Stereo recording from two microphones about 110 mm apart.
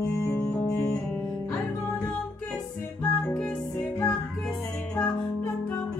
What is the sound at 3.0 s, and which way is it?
Music, 10° left (ahead or behind).